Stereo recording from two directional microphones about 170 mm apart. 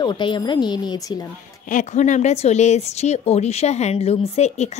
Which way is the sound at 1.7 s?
45° left (ahead or behind).